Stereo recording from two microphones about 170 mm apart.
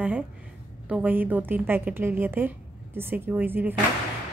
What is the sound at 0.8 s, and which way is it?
A woman's voice, 10° right (ahead or behind).